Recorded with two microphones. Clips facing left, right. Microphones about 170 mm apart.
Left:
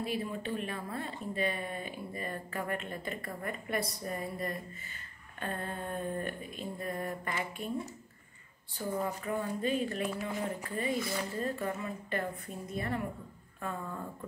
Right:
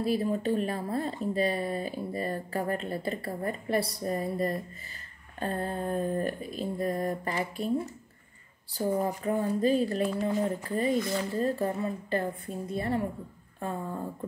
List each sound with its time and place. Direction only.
0.0 s speech: 35° right (ahead or behind)
8.7 s speech: 35° right (ahead or behind)